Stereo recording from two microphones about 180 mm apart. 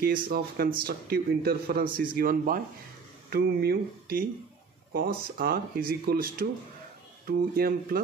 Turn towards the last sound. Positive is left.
turn(degrees=-55)  # may be behind; listen again after turning